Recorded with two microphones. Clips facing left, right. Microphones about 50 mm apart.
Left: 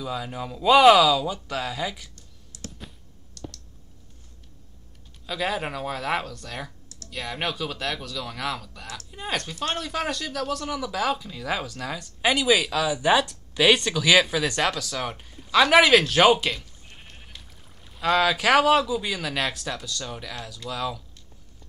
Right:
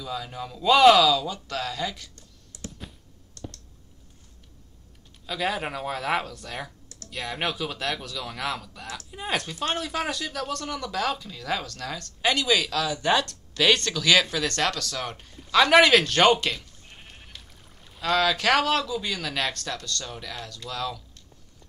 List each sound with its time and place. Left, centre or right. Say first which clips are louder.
0.0 s speech: left 2 dB; centre
2.1 s computer keyboard: even; right
3.4 s a sound: left 1 dB; right
5.2 s speech: left 1 dB; centre